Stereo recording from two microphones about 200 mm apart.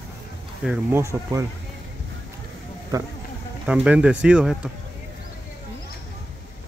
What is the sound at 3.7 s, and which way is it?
Speech, 5° right (ahead or behind).